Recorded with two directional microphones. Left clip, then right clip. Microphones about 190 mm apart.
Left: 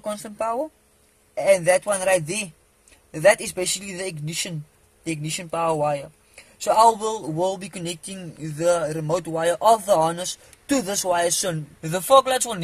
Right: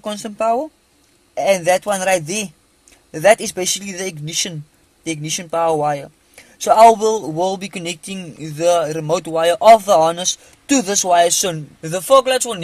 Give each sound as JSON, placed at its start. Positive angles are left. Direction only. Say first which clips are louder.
{"t": 0.0, "sound": "speech", "louder": "right 7 dB", "side_deg": -45}